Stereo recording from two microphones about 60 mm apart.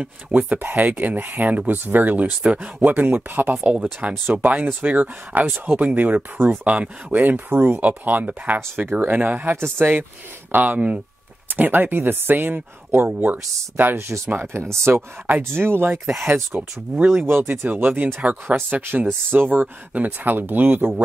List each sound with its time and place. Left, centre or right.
0.3 s speech: right
2.4 s speech: centre
2.8 s speech: right
7.5 s speech: right
7.8 s speech: right
18.8 s speech: right